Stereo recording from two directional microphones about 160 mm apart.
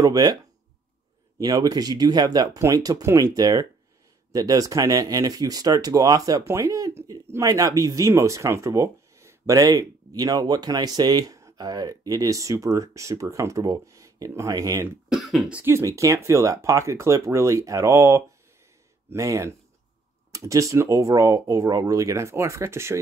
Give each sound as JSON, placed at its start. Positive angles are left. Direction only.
{"t": 0.0, "sound": "speech", "side_deg": -25}
{"t": 1.4, "sound": "speech", "side_deg": -25}
{"t": 15.0, "sound": "speech", "side_deg": 0}